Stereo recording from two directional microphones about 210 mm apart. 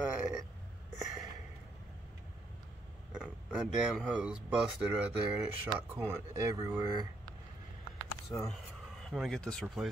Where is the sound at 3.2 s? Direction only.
5° right (ahead or behind).